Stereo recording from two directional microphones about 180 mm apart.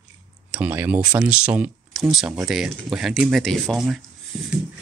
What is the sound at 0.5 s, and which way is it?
Speech, 10° right (ahead or behind).